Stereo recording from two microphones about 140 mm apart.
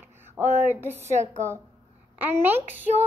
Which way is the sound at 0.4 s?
15° right (ahead or behind).